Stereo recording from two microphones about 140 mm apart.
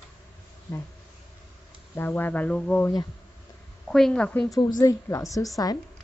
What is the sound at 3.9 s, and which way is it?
Speech, 5° left (ahead or behind).